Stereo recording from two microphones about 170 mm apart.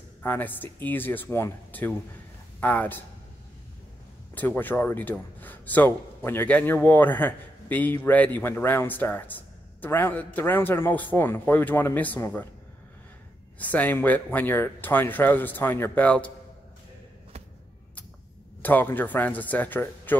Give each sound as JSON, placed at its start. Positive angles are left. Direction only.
{"t": 0.2, "sound": "a man's voice", "side_deg": 10}
{"t": 4.4, "sound": "a man's voice", "side_deg": 10}
{"t": 13.6, "sound": "a man's voice", "side_deg": 10}
{"t": 18.6, "sound": "a man's voice", "side_deg": 10}